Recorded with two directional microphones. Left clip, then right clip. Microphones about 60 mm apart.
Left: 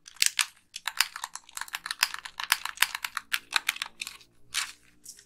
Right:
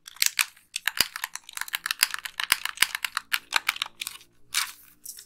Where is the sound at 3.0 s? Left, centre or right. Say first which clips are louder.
Right 3 dB; centre.